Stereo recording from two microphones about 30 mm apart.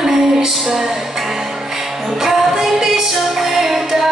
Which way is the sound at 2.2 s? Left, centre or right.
Centre.